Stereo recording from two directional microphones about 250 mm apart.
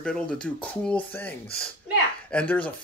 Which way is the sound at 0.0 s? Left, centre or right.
Centre.